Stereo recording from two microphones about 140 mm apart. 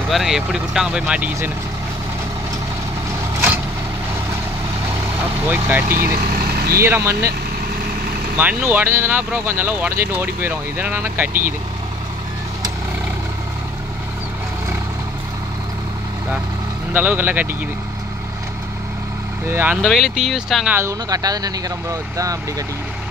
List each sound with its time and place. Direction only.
0.1 s speech: centre (ahead or behind)
5.5 s speech: 15° right (ahead or behind)
5.9 s speech: 90° right
6.8 s speech: 20° right (ahead or behind)
8.4 s speech: 10° right (ahead or behind)
16.9 s speech: 15° right (ahead or behind)
19.4 s speech: 15° right (ahead or behind)
19.8 s speech: centre (ahead or behind)
20.7 s speech: 20° right (ahead or behind)